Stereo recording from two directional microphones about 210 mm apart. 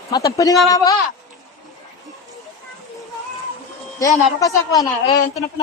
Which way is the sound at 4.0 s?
15° left (ahead or behind).